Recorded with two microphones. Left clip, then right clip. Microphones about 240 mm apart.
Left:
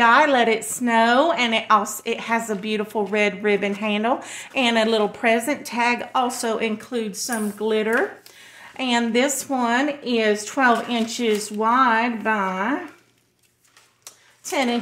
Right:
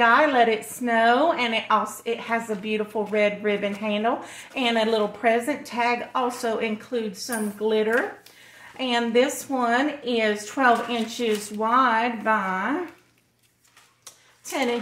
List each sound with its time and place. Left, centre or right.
0.0 s a woman's voice: left
14.4 s a woman's voice: left